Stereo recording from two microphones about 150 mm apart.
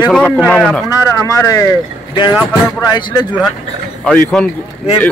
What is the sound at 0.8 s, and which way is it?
Speech, 25° left (ahead or behind).